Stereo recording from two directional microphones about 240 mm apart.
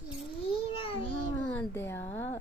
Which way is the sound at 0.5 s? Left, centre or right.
Left.